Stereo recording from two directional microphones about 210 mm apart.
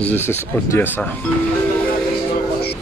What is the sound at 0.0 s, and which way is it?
Speech, 10° left (ahead or behind).